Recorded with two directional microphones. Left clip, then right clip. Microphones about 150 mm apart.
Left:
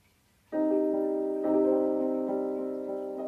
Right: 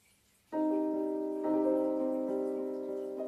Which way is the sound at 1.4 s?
20° left (ahead or behind).